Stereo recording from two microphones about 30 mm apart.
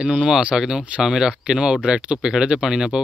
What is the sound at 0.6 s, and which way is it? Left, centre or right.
Speech, centre.